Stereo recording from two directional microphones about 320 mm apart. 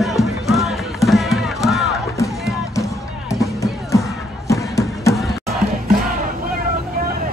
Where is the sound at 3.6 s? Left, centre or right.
Centre.